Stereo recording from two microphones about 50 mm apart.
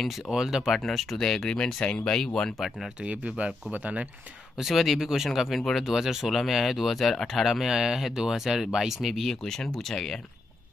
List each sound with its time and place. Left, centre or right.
0.0 s speech: centre
0.7 s speech: centre
2.5 s speech: centre
3.0 s speech: right
4.6 s speech: centre
9.4 s speech: centre